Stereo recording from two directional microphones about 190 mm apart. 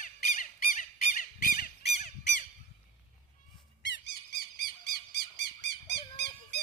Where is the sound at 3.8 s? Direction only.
65° left (ahead or behind).